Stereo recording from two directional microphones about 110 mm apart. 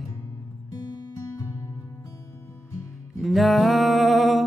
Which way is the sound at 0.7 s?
35° left (ahead or behind).